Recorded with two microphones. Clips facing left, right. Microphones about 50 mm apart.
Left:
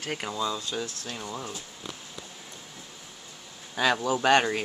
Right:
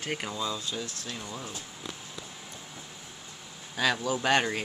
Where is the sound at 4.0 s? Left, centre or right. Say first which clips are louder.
Left 4 dB; left.